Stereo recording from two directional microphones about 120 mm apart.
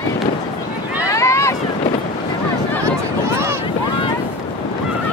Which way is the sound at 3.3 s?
20° right (ahead or behind).